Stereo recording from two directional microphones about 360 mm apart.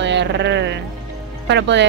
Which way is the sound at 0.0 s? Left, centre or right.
Right.